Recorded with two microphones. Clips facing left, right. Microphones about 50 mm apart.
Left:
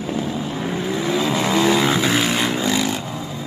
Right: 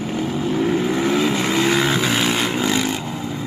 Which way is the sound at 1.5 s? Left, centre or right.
Centre.